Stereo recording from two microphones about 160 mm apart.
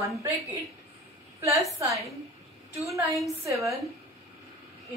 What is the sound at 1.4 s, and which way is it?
Speech, 20° right (ahead or behind).